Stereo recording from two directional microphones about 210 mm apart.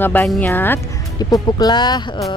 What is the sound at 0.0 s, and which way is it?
Speech, 10° left (ahead or behind).